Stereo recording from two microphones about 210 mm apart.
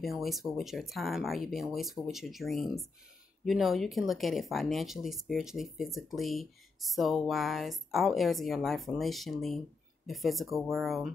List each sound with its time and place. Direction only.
0.0 s speech: centre (ahead or behind)